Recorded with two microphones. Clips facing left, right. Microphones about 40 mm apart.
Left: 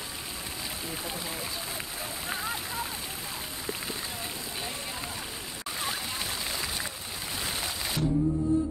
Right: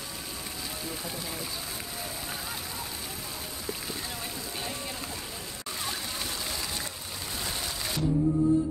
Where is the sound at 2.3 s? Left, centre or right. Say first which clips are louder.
Left 4 dB; left.